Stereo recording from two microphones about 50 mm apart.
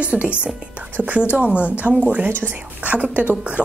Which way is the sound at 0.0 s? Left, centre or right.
Right.